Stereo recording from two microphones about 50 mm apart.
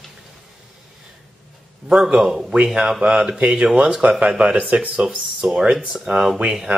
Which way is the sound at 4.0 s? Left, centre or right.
Right.